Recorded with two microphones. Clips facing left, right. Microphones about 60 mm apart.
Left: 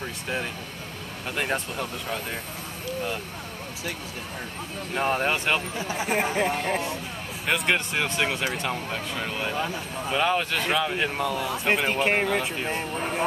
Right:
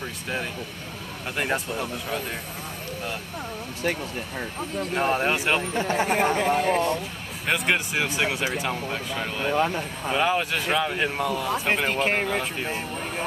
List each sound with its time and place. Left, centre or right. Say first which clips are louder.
1.3 s speech: right 1 dB; centre
4.9 s speech: right 1 dB; centre
5.8 s speech: right 6 dB; right
6.3 s speech: right 3 dB; centre
9.6 s speech: right 5 dB; right
10.0 s speech: right 1 dB; centre